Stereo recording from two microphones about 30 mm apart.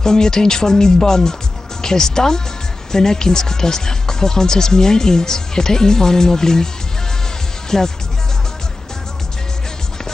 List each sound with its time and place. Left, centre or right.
0.0 s speech: left
7.7 s music: centre